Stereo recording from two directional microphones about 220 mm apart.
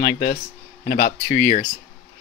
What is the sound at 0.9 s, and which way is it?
Speech, 45° left (ahead or behind).